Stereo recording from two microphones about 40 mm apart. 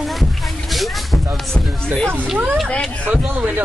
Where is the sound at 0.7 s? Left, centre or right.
Centre.